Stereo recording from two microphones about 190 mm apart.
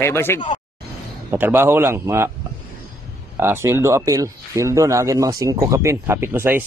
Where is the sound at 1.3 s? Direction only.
10° right (ahead or behind).